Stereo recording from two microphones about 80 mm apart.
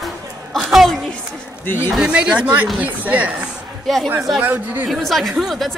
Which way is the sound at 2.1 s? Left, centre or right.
Centre.